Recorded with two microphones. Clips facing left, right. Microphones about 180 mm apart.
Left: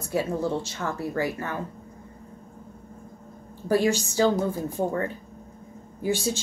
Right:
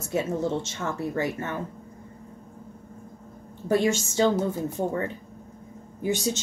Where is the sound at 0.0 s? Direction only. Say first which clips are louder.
Even; 20° right (ahead or behind).